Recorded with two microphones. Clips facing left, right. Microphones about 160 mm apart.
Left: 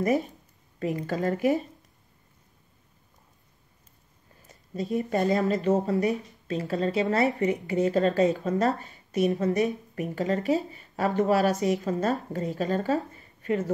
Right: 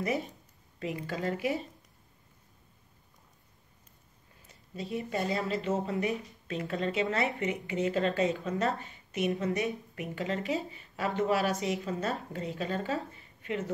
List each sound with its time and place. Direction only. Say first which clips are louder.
0.7 s speech: left 6 dB; 45° left (ahead or behind)
4.5 s speech: left 7 dB; 45° left (ahead or behind)